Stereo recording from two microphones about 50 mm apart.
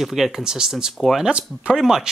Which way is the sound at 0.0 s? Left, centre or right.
Centre.